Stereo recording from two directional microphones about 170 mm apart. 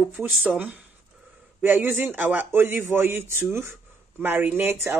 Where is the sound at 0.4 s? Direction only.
5° right (ahead or behind).